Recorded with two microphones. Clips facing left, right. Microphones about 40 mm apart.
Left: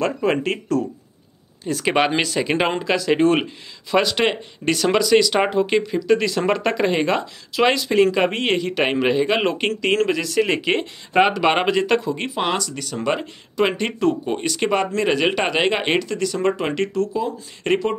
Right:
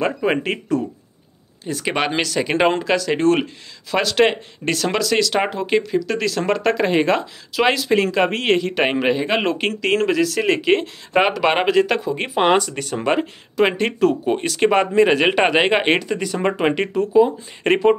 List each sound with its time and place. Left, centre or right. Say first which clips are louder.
0.0 s speech: right 1 dB; centre
1.7 s speech: left 2 dB; centre
12.0 s speech: right 1 dB; centre
12.4 s speech: right 10 dB; right